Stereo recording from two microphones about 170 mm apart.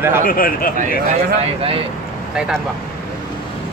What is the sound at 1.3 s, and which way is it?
Speech, 35° right (ahead or behind).